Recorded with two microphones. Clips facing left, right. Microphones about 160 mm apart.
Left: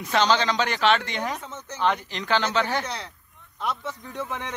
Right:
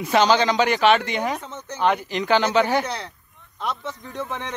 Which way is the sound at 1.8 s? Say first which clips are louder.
Right 4 dB; 10° right (ahead or behind).